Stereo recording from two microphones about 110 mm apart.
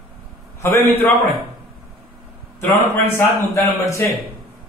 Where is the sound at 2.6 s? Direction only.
20° left (ahead or behind).